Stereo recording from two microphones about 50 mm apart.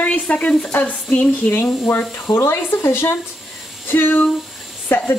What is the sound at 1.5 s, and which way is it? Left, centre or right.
Speech, left.